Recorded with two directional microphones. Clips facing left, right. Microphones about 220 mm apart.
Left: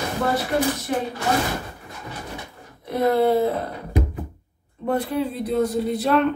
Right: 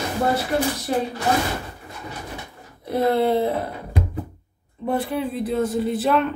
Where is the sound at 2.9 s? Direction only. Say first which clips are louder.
Left 1 dB; 25° right (ahead or behind).